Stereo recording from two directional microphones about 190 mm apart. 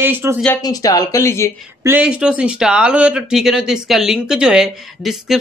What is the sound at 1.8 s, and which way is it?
Speech, 5° right (ahead or behind).